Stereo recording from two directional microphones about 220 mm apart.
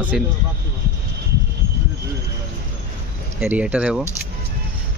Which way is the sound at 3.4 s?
5° right (ahead or behind).